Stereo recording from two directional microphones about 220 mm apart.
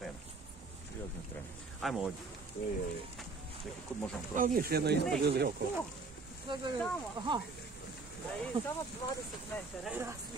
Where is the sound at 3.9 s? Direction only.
5° left (ahead or behind).